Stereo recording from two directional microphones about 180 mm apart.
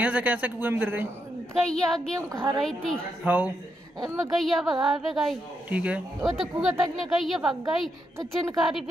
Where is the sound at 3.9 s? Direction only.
20° right (ahead or behind).